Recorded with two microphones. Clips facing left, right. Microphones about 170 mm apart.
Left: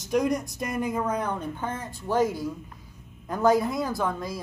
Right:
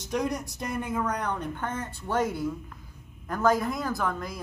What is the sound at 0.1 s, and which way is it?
A woman's voice, 10° left (ahead or behind).